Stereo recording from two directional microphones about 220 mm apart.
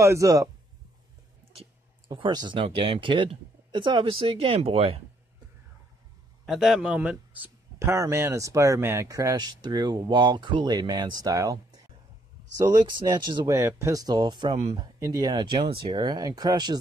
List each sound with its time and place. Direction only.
0.0 s a man's voice: 15° right (ahead or behind)
1.6 s speech: 20° right (ahead or behind)
6.4 s a man's voice: centre (ahead or behind)
12.5 s a man's voice: 20° right (ahead or behind)